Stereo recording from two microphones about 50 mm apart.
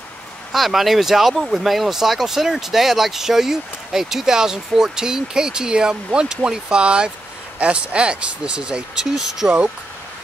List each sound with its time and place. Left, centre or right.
0.5 s speech: centre